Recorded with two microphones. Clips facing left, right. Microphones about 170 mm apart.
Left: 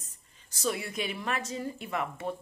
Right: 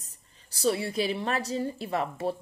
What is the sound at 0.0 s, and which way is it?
Speech, 35° right (ahead or behind).